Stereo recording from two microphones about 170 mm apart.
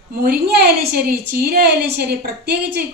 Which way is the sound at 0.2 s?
65° right (ahead or behind).